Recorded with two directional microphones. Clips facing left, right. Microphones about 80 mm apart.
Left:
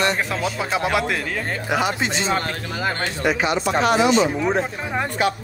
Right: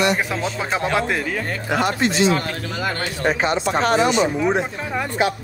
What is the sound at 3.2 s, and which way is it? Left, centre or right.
Speech, right.